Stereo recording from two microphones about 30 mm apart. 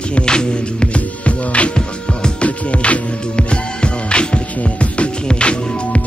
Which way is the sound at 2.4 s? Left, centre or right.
Left.